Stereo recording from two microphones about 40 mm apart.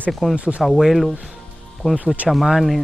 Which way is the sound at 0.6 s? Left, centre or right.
Centre.